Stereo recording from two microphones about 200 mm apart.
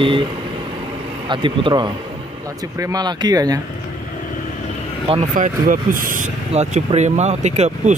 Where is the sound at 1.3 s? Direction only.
25° right (ahead or behind).